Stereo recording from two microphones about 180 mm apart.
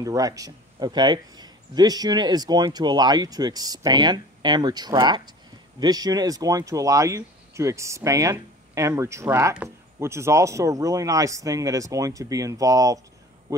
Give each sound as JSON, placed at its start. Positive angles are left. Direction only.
{"t": 0.0, "sound": "a man's voice", "side_deg": -20}